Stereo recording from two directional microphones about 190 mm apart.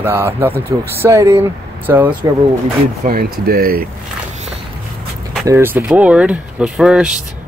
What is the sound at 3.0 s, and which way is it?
Speech, 50° right (ahead or behind).